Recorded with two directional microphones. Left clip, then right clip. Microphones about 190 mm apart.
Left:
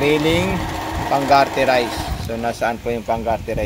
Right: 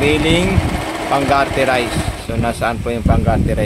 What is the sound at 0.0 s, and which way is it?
Speech, centre (ahead or behind).